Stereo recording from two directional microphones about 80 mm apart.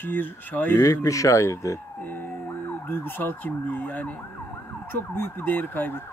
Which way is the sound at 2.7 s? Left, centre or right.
Left.